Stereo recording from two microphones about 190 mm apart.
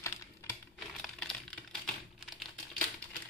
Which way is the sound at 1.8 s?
5° left (ahead or behind).